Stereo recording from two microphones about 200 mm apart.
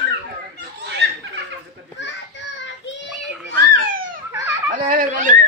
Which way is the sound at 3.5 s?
45° right (ahead or behind).